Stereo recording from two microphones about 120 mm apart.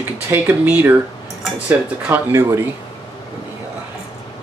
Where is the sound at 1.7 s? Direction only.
20° right (ahead or behind).